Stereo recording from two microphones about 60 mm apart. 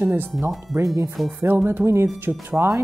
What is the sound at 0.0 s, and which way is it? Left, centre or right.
Speech, right.